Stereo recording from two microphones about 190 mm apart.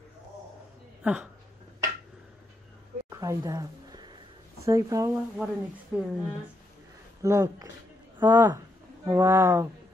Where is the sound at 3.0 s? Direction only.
15° right (ahead or behind).